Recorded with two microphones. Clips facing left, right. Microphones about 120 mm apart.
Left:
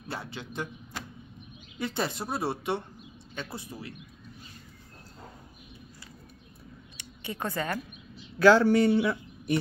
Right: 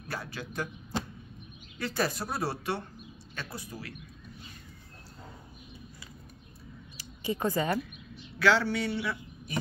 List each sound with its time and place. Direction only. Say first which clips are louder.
0.1 s speech: even; 25° left (ahead or behind)
0.9 s a sound: right 7 dB; 25° right (ahead or behind)
1.8 s speech: even; 20° left (ahead or behind)
7.2 s speech: right 3 dB; 10° right (ahead or behind)
8.4 s a man's voice: left 7 dB; 45° left (ahead or behind)